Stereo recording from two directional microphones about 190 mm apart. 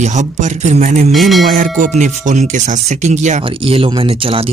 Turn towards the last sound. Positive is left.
turn(degrees=-30)  # may be behind; listen again after turning